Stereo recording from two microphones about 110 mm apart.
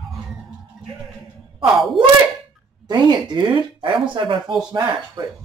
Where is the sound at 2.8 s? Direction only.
40° right (ahead or behind).